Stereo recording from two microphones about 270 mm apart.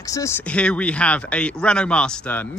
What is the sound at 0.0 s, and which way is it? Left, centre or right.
Speech, centre.